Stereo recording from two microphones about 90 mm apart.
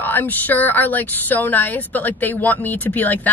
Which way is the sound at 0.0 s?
20° left (ahead or behind).